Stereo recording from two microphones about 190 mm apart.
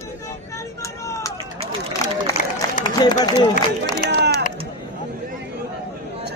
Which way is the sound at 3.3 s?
20° left (ahead or behind).